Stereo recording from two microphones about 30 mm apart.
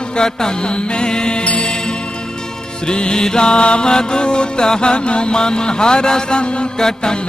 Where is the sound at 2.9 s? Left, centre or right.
Left.